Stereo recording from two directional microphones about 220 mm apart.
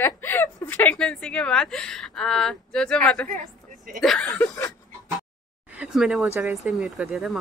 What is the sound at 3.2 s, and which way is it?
Speech, 35° right (ahead or behind).